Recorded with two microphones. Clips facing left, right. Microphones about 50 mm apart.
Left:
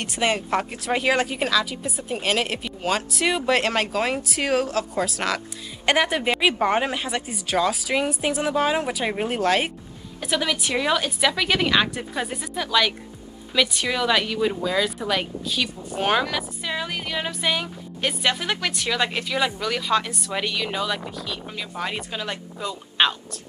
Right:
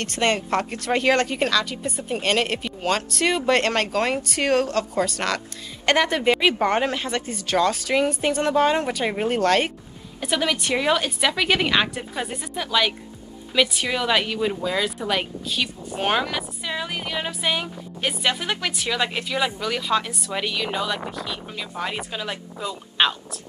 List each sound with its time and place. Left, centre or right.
0.0 s a woman's voice: centre